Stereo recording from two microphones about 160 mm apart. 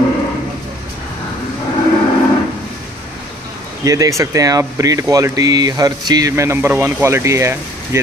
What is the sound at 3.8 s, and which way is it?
Speech, 20° right (ahead or behind).